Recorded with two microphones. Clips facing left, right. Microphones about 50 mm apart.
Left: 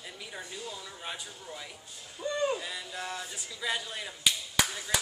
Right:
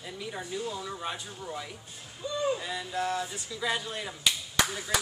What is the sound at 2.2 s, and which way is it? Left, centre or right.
Speech, left.